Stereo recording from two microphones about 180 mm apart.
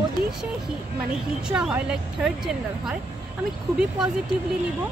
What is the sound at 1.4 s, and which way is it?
Speech, 5° right (ahead or behind).